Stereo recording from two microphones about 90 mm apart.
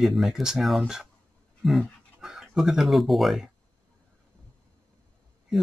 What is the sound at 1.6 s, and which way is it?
Dog, centre (ahead or behind).